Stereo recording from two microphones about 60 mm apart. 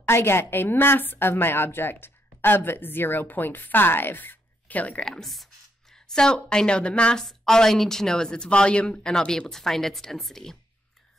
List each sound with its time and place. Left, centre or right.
0.0 s a woman's voice: left
5.0 s speech: centre
7.2 s a woman's voice: centre